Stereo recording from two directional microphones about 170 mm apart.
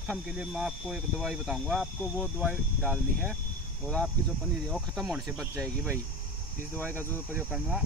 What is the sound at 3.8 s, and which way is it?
Speech, 5° left (ahead or behind).